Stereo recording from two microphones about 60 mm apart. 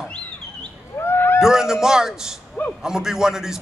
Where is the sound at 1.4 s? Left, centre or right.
Centre.